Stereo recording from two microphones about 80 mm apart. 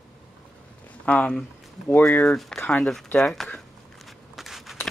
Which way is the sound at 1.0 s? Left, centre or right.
Centre.